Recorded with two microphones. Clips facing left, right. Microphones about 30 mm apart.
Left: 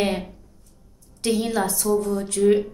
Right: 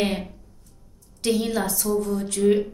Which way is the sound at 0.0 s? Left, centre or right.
Centre.